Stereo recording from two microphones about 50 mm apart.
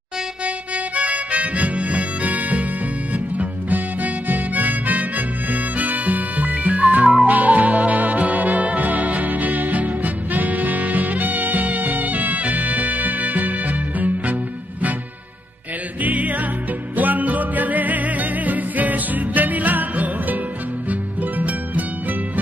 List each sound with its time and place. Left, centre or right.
0.9 s harmonica: right
3.3 s music: right
16.0 s music: right